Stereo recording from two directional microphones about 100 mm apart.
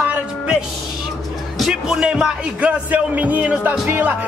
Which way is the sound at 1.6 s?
5° right (ahead or behind).